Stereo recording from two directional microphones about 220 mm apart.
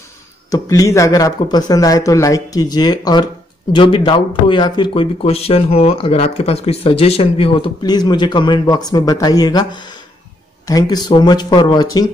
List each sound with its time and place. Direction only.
0.5 s speech: 15° left (ahead or behind)